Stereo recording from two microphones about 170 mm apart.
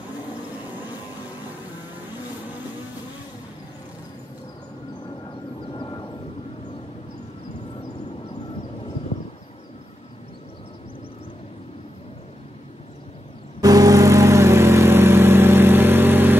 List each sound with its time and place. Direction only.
5.7 s vehicle: 25° left (ahead or behind)
13.6 s vehicle: 20° right (ahead or behind)